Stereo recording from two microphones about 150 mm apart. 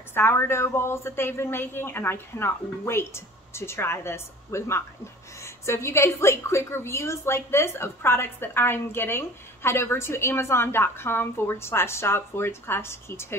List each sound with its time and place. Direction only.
0.1 s a woman's voice: 15° left (ahead or behind)